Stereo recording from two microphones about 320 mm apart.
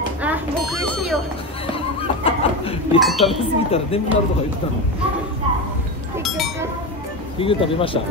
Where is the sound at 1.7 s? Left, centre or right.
Centre.